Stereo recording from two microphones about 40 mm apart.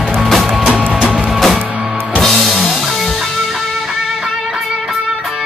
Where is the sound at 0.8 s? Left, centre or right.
Right.